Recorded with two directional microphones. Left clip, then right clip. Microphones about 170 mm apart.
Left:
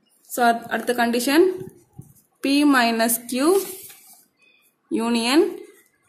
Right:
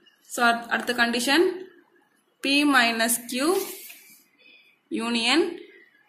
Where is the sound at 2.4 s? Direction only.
45° left (ahead or behind).